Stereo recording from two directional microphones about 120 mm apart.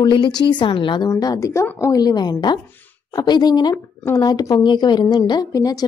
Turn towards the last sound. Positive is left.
turn(degrees=30)  # may be behind; listen again after turning